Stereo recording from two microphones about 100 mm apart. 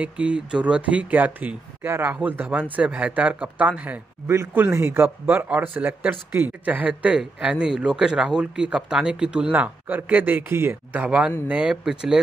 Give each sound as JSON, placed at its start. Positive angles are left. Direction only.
{"t": 0.0, "sound": "speech", "side_deg": -10}
{"t": 4.3, "sound": "speech", "side_deg": -25}